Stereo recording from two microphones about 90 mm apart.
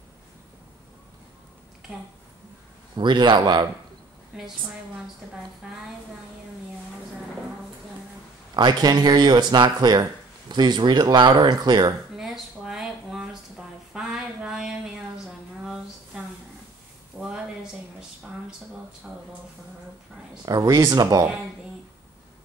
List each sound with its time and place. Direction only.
3.0 s speech: 60° right (ahead or behind)
4.3 s a woman's voice: 10° right (ahead or behind)
8.5 s speech: 50° right (ahead or behind)
12.2 s a sound: 5° right (ahead or behind)
17.1 s a sound: 10° right (ahead or behind)
20.4 s speech: 45° right (ahead or behind)